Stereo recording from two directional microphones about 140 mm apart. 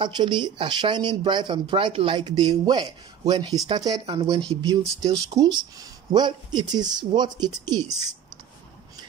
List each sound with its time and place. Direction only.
0.0 s speech: 35° right (ahead or behind)